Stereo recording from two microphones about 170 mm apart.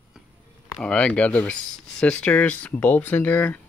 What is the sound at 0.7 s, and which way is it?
Speech, 5° left (ahead or behind).